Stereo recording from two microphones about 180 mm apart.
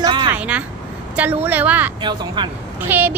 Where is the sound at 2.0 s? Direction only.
25° right (ahead or behind).